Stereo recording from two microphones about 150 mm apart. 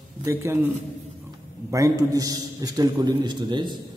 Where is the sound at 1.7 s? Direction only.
20° right (ahead or behind).